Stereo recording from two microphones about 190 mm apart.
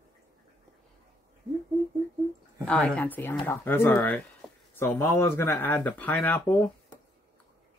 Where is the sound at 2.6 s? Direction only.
5° left (ahead or behind).